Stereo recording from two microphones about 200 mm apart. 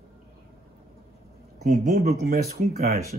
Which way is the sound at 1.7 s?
45° right (ahead or behind).